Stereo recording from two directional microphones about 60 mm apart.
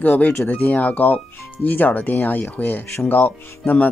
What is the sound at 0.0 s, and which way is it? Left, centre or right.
Speech, left.